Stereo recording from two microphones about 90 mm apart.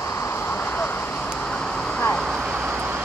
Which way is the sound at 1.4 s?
10° left (ahead or behind).